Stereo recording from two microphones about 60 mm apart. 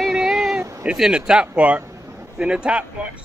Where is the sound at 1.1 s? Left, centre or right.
Centre.